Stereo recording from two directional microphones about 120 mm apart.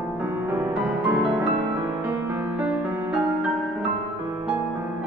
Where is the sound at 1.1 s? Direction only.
15° right (ahead or behind).